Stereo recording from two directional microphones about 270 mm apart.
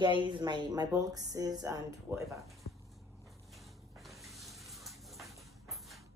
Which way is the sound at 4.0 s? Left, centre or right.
Centre.